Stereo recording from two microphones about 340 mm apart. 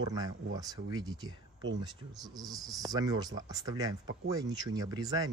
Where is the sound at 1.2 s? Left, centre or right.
Right.